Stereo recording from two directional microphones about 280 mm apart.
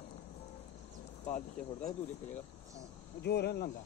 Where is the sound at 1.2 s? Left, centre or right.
Left.